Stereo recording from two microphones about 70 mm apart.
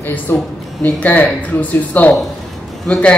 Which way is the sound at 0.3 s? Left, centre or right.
Left.